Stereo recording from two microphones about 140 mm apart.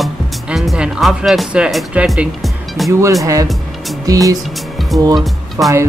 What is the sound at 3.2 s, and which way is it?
Speech, 25° right (ahead or behind).